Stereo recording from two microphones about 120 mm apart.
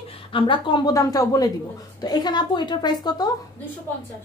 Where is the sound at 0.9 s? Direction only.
30° left (ahead or behind).